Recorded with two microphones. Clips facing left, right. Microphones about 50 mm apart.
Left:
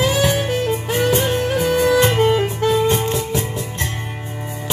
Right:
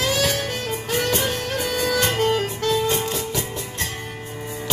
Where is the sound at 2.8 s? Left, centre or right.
Left.